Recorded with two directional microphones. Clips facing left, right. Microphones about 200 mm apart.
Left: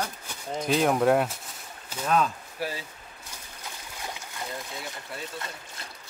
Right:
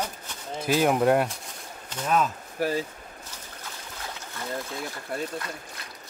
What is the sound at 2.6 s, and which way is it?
Speech, 45° right (ahead or behind).